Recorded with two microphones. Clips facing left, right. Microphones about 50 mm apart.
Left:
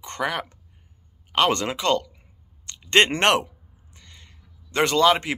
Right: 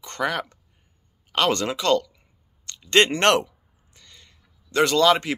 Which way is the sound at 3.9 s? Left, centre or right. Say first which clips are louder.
Left 1 dB; left.